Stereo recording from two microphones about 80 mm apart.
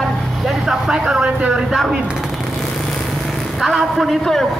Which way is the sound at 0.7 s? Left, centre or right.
Centre.